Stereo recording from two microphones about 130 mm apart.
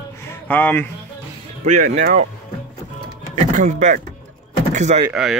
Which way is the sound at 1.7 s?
75° right (ahead or behind).